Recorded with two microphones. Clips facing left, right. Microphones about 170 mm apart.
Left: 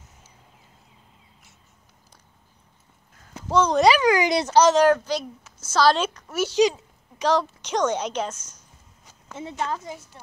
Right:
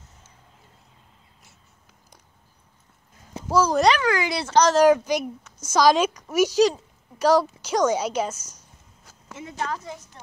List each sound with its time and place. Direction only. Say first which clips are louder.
3.4 s speech: left 1 dB; 5° right (ahead or behind)
3.9 s speech: left 4 dB; 15° left (ahead or behind)
4.7 s a child's voice: right 2 dB; 10° right (ahead or behind)
7.2 s a sound: right 3 dB; 5° right (ahead or behind)
9.4 s a woman's voice: left 1 dB; 25° left (ahead or behind)
9.8 s speech: left 1 dB; 10° left (ahead or behind)